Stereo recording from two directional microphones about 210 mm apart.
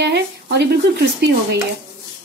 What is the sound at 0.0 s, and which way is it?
Speech, 55° right (ahead or behind).